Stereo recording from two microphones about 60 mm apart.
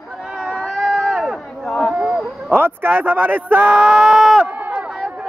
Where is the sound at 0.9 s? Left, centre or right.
Centre.